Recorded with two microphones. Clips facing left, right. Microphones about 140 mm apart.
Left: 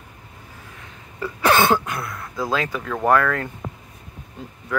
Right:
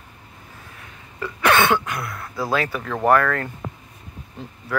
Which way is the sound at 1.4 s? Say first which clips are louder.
Left 1 dB; 35° left (ahead or behind).